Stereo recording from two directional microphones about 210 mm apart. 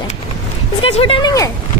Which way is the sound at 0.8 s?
25° left (ahead or behind).